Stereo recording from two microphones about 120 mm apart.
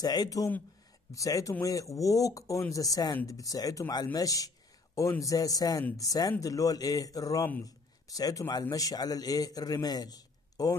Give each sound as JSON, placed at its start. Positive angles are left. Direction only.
{"t": 0.0, "sound": "a man's voice", "side_deg": 35}